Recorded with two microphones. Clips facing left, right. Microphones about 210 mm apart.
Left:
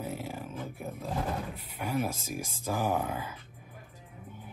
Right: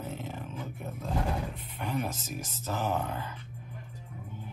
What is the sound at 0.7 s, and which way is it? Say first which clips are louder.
Roar: right 1 dB; 10° left (ahead or behind).